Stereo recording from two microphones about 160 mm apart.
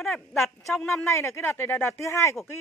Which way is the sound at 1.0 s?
15° left (ahead or behind).